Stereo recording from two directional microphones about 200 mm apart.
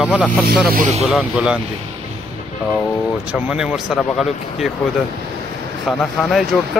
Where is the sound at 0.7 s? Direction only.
40° right (ahead or behind).